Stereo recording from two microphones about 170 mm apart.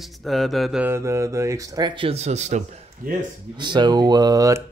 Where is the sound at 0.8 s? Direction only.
15° right (ahead or behind); by 2.6 s 40° right (ahead or behind).